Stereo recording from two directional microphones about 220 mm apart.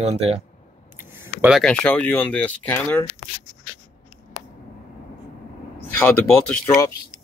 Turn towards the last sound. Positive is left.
turn(degrees=5)  # may be behind; listen again after turning